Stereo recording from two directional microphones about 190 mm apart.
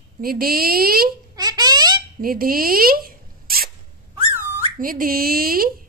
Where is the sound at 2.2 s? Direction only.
50° right (ahead or behind).